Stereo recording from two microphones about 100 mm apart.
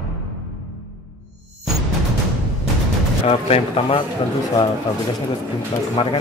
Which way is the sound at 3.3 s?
75° left (ahead or behind).